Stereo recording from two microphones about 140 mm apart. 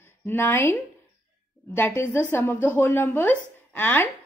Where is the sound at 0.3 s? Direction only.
15° left (ahead or behind).